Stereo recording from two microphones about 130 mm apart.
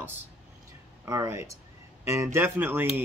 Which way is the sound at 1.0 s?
25° right (ahead or behind).